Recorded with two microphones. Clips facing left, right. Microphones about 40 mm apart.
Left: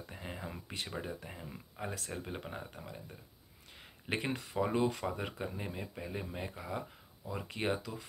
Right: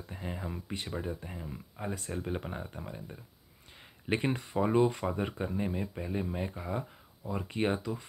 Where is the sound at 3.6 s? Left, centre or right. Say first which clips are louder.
Right 6 dB; centre.